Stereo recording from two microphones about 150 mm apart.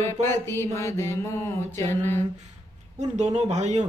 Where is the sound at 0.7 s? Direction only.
20° left (ahead or behind).